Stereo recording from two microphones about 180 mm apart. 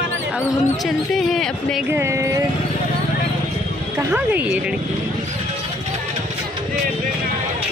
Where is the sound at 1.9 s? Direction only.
15° right (ahead or behind).